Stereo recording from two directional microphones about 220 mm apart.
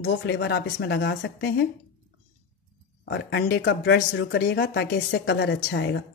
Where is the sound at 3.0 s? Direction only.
50° left (ahead or behind).